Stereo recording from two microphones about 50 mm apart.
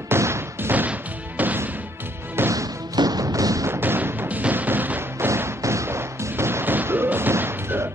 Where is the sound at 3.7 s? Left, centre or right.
Right.